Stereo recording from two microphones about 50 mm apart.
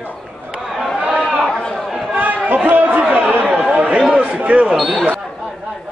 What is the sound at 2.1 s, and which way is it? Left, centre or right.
Chatter, right.